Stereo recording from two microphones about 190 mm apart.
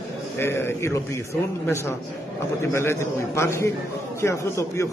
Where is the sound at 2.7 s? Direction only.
15° left (ahead or behind).